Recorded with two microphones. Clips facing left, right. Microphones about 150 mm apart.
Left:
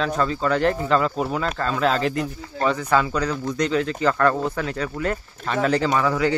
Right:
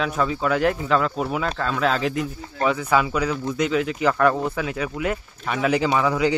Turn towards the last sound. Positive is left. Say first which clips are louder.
# even
turn(degrees=-15)  # may be behind; listen again after turning